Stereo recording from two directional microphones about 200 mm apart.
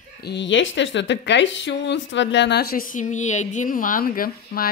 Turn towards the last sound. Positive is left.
turn(degrees=45)  # may be behind; listen again after turning